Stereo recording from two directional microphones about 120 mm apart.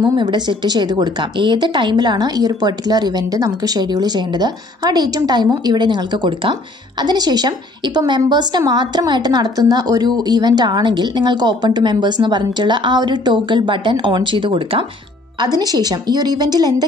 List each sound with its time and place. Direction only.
0.1 s a woman's voice: 40° right (ahead or behind)
15.4 s a woman's voice: 30° right (ahead or behind)